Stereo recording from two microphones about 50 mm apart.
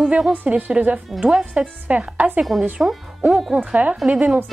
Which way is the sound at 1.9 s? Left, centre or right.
Right.